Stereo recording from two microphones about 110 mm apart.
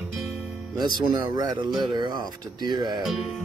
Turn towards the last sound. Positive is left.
turn(degrees=0)  # may be behind; listen again after turning